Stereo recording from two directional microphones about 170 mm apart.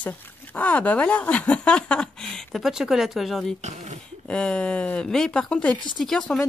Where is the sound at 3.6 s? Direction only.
40° right (ahead or behind).